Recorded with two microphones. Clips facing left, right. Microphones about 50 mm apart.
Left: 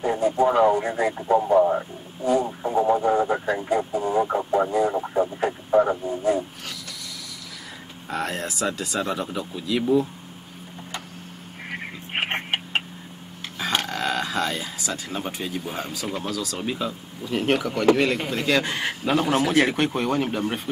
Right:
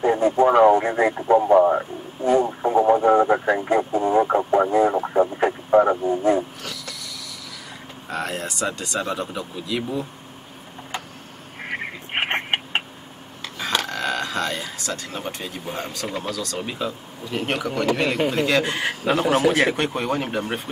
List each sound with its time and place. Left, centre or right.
0.0 s speech: right
2.4 s radio: right
2.9 s speech: right
4.9 s a sound: right
5.8 s speech: right
8.1 s speech: centre
12.2 s tick-tock: right
13.6 s a sound: centre
16.2 s speech: centre